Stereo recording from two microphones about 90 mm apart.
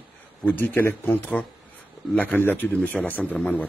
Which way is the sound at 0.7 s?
20° left (ahead or behind).